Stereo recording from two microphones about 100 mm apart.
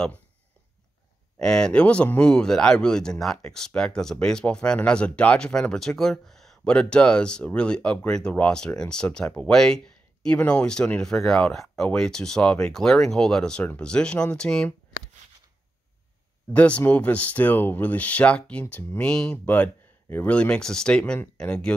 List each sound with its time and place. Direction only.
1.4 s speech: 10° left (ahead or behind)
16.5 s speech: 15° left (ahead or behind)